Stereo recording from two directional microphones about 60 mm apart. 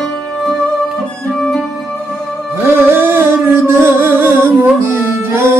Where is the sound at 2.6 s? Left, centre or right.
Right.